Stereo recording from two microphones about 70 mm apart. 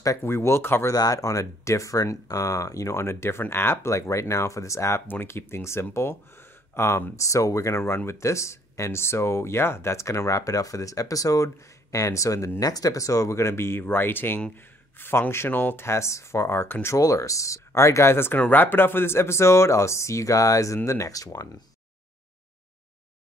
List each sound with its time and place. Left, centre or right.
0.2 s speech: left
0.9 s speech: left
3.9 s speech: left
5.0 s speech: left
12.5 s speech: left
17.0 s speech: left